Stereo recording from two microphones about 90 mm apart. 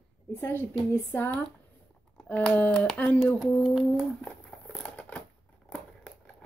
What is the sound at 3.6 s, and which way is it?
Speech, 5° right (ahead or behind).